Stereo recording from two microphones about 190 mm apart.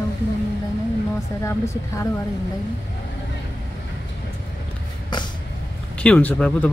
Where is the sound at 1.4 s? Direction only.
15° left (ahead or behind).